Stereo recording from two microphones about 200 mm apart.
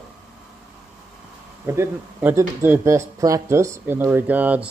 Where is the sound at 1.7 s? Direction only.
10° right (ahead or behind).